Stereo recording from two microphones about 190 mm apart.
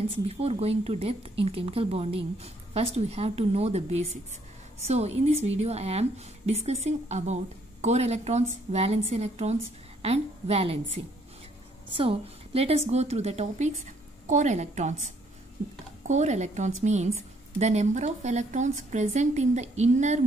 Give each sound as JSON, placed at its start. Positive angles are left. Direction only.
{"t": 0.1, "sound": "a woman's voice", "side_deg": -30}